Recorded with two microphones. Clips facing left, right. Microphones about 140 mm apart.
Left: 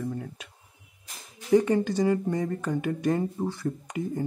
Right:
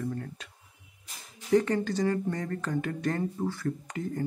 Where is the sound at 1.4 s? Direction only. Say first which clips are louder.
Left 3 dB; 10° left (ahead or behind).